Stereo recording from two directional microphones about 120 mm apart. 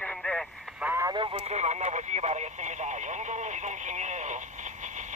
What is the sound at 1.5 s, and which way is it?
Speech, 70° right (ahead or behind).